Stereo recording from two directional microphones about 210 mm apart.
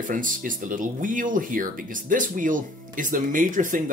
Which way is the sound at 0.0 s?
40° right (ahead or behind).